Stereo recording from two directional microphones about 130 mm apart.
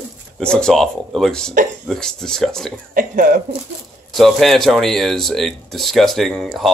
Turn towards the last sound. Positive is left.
turn(degrees=0)  # may be behind; listen again after turning